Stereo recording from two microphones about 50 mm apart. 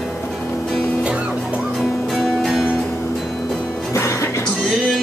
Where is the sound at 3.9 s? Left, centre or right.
Left.